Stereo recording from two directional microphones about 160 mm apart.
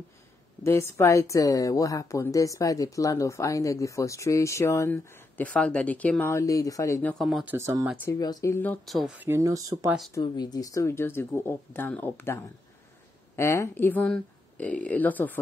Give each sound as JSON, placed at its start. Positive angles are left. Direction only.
{"t": 0.7, "sound": "speech", "side_deg": 15}
{"t": 7.2, "sound": "speech", "side_deg": 0}
{"t": 7.5, "sound": "speech", "side_deg": -15}
{"t": 8.0, "sound": "speech", "side_deg": 20}
{"t": 8.8, "sound": "speech", "side_deg": 0}
{"t": 10.2, "sound": "speech", "side_deg": 25}